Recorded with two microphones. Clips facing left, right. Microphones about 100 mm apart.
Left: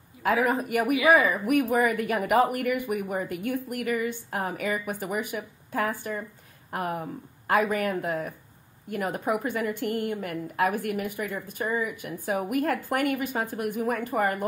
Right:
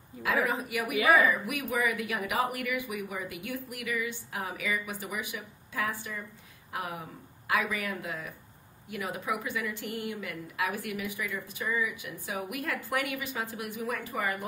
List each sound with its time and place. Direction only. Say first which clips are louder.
0.2 s a woman's voice: left 5 dB; 50° left (ahead or behind)